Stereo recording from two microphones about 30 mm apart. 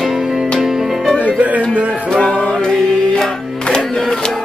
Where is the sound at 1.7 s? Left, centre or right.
Right.